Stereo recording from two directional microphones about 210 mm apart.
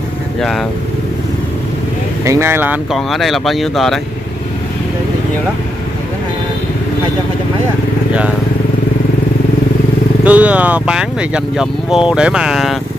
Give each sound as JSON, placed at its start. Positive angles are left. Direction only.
{"t": 0.4, "sound": "speech", "side_deg": 0}
{"t": 2.2, "sound": "speech", "side_deg": -10}
{"t": 10.2, "sound": "speech", "side_deg": -5}